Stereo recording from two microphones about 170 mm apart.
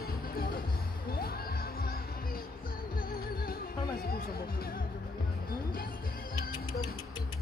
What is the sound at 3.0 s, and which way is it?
Music, 60° left (ahead or behind).